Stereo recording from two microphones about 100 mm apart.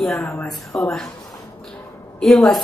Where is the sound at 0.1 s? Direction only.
30° left (ahead or behind).